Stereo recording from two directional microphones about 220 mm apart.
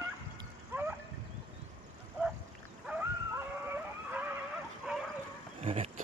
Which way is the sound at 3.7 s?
10° right (ahead or behind).